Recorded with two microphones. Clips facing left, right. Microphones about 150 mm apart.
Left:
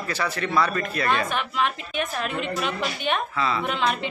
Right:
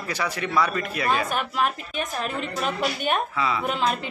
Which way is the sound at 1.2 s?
40° right (ahead or behind).